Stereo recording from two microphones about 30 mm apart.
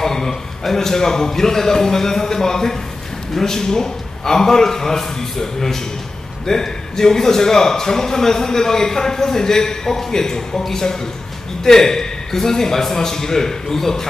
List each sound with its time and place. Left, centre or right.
0.0 s a man's voice: centre